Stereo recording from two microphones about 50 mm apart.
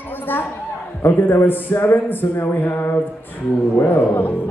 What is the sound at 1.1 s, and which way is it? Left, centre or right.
Speech, left.